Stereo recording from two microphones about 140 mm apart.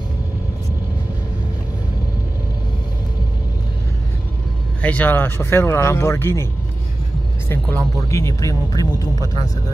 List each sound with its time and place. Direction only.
4.8 s speech: 10° left (ahead or behind); by 9.2 s 25° left (ahead or behind)